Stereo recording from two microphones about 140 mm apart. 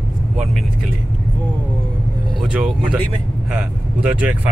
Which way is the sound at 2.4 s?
5° right (ahead or behind).